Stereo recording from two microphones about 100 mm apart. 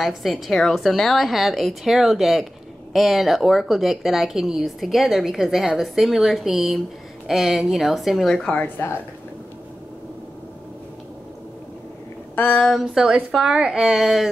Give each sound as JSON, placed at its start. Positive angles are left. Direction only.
{"t": 0.0, "sound": "a woman's voice", "side_deg": 0}
{"t": 8.5, "sound": "speech", "side_deg": 15}
{"t": 12.4, "sound": "speech", "side_deg": 15}
{"t": 12.6, "sound": "a woman's voice", "side_deg": 0}